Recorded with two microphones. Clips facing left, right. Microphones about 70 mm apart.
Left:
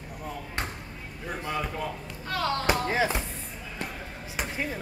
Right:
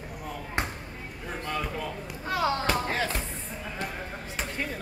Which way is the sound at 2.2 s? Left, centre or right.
Centre.